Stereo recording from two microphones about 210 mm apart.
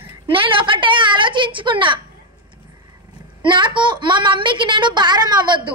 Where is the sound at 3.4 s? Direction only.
20° right (ahead or behind).